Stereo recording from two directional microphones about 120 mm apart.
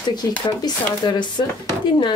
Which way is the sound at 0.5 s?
35° left (ahead or behind).